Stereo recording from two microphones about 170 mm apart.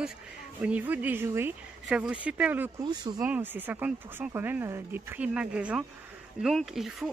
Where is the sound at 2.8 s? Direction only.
25° right (ahead or behind).